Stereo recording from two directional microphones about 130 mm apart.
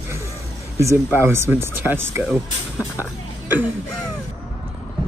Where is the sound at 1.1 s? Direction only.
20° right (ahead or behind).